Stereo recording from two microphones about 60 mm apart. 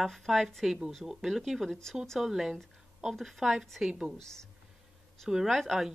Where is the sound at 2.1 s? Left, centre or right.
Centre.